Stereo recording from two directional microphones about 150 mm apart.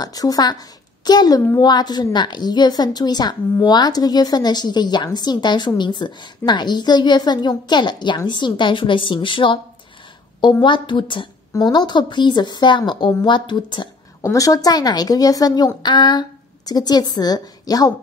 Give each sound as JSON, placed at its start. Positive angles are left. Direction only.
{"t": 0.0, "sound": "a woman's voice", "side_deg": 25}
{"t": 10.6, "sound": "a woman's voice", "side_deg": 30}